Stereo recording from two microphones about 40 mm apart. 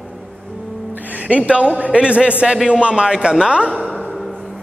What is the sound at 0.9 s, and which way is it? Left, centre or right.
A man's voice, right.